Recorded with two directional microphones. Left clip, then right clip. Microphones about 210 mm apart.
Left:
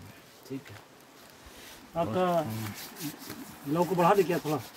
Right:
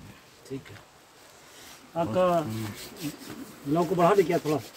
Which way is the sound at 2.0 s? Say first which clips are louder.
Right 3 dB; 5° right (ahead or behind).